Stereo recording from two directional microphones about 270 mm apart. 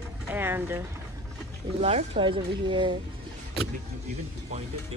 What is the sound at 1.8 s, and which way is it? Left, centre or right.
Speech, right.